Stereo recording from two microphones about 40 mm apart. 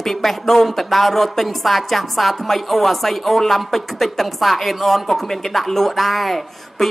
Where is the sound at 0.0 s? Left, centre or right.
Centre.